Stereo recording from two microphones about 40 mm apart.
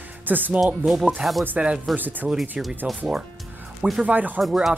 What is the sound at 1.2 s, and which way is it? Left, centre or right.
Speech, right.